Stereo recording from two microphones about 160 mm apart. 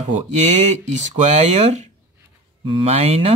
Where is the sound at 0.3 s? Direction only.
45° right (ahead or behind).